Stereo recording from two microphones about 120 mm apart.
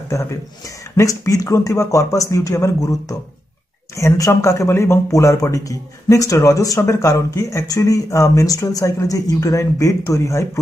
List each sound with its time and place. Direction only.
0.1 s speech: 25° left (ahead or behind)